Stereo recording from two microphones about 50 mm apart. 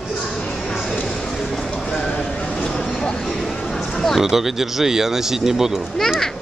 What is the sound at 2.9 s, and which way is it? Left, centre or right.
Vehicle, centre.